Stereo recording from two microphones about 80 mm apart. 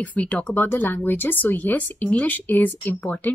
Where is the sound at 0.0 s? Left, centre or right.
Centre.